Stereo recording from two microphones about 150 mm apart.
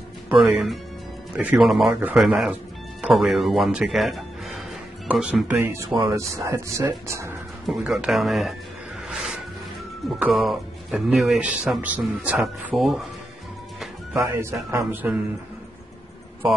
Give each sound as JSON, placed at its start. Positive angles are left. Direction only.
{"t": 1.3, "sound": "speech", "side_deg": -10}
{"t": 5.9, "sound": "speech", "side_deg": -30}
{"t": 6.1, "sound": "speech", "side_deg": -20}
{"t": 7.6, "sound": "speech", "side_deg": 0}
{"t": 9.1, "sound": "music", "side_deg": 0}
{"t": 10.0, "sound": "speech", "side_deg": -5}
{"t": 14.1, "sound": "speech", "side_deg": -15}